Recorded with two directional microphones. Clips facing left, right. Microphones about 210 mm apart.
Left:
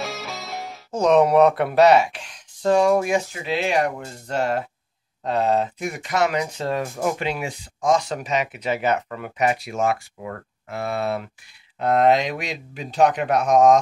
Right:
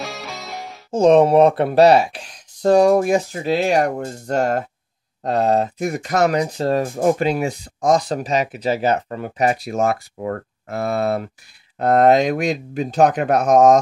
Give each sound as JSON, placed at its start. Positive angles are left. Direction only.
{"t": 0.0, "sound": "music", "side_deg": 0}
{"t": 0.9, "sound": "speech", "side_deg": -30}